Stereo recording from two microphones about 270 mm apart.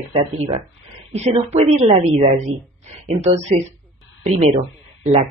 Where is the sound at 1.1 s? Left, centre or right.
Right.